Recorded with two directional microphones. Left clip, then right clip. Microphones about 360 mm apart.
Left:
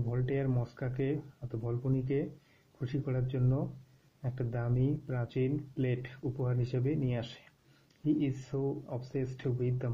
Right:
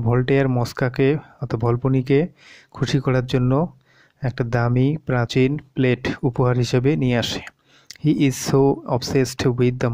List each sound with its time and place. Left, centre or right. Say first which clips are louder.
0.1 s speech: right 16 dB; right